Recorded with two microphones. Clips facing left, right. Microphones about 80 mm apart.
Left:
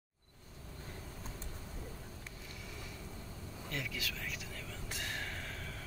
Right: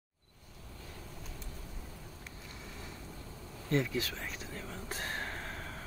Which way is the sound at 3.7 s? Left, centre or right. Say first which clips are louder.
Right 10 dB; right.